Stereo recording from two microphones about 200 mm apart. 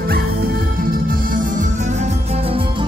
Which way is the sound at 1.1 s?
40° right (ahead or behind).